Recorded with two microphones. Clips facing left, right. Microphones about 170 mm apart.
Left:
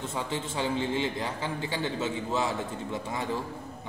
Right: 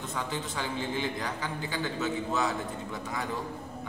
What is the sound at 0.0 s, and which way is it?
A man's voice, 25° left (ahead or behind).